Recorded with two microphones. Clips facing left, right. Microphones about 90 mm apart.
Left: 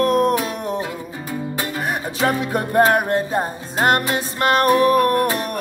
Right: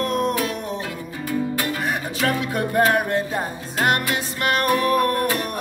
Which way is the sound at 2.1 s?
30° left (ahead or behind).